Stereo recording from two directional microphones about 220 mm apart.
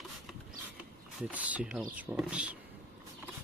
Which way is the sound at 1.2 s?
5° right (ahead or behind).